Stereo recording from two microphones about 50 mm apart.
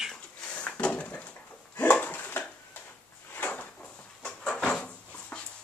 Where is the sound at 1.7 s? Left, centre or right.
Left.